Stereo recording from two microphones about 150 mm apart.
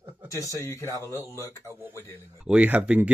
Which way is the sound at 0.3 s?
20° left (ahead or behind).